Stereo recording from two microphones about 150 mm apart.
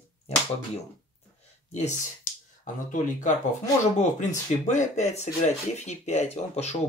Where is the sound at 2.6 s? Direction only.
55° left (ahead or behind).